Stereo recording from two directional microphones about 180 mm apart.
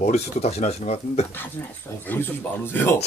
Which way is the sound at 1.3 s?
15° left (ahead or behind).